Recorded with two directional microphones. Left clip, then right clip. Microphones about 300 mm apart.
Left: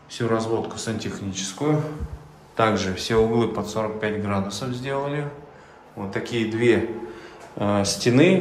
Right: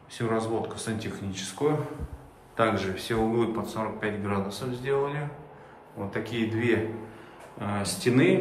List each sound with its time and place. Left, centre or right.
0.1 s speech: centre
2.5 s a man's voice: centre